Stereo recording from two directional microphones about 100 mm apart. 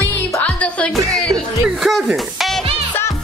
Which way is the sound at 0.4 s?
10° left (ahead or behind).